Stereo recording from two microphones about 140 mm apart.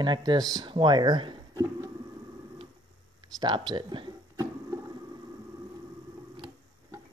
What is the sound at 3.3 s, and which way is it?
Speech, 30° right (ahead or behind).